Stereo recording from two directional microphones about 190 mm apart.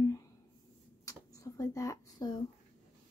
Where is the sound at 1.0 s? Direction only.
15° left (ahead or behind).